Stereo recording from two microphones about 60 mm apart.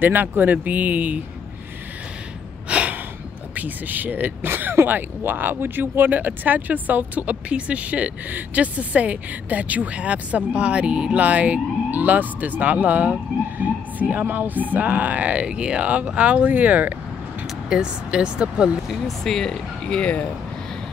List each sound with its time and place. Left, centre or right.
0.0 s speech: right
2.7 s a sound: right
3.5 s speech: right
17.6 s speech: centre
18.9 s speech: centre; by 20.2 s left